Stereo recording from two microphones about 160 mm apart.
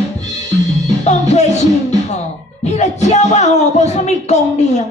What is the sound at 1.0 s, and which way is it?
Music, 45° left (ahead or behind).